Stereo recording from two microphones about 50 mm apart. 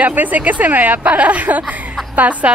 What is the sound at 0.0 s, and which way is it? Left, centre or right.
Speech, right.